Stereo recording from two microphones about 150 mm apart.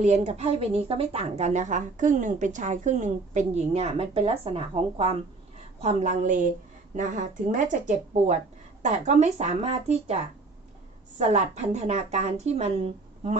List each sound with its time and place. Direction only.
0.0 s a woman's voice: 50° right (ahead or behind)